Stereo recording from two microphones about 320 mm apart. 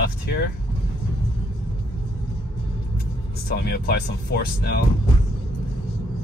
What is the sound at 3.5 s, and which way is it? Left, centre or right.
Speech, left.